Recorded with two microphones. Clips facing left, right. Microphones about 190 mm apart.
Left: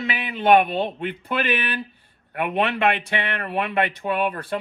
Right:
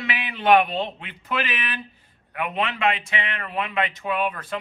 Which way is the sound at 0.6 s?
55° left (ahead or behind).